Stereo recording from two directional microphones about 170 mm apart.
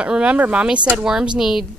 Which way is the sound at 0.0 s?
5° right (ahead or behind).